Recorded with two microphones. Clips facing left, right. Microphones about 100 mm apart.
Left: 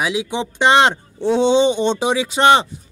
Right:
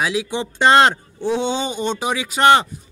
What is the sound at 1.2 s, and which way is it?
Speech, 30° left (ahead or behind).